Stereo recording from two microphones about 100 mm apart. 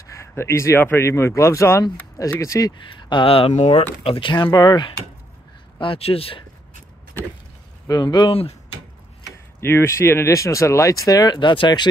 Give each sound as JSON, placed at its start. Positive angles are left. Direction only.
{"t": 0.0, "sound": "speech", "side_deg": 30}
{"t": 3.0, "sound": "speech", "side_deg": 55}
{"t": 5.8, "sound": "speech", "side_deg": 70}
{"t": 7.9, "sound": "speech", "side_deg": 45}
{"t": 8.3, "sound": "speech", "side_deg": 80}
{"t": 9.6, "sound": "speech", "side_deg": 25}